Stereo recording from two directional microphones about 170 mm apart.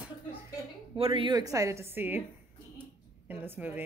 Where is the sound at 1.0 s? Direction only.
30° right (ahead or behind); by 2.2 s 10° right (ahead or behind).